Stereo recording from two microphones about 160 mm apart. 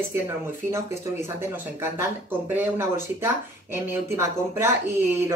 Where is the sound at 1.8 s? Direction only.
15° right (ahead or behind).